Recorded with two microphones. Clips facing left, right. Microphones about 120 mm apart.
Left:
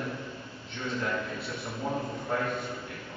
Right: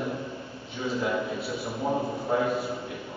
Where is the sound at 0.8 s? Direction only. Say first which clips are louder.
Right 4 dB; 10° right (ahead or behind).